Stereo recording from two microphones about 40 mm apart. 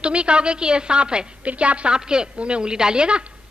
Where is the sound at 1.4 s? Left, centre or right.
Right.